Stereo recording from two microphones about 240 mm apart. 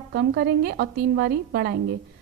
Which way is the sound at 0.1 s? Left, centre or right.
Right.